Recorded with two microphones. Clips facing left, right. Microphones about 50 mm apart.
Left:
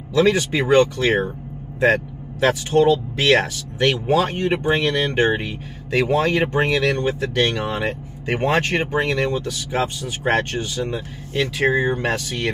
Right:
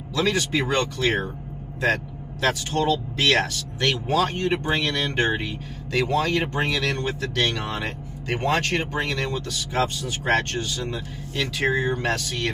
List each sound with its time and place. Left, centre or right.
0.1 s speech: centre
2.4 s speech: centre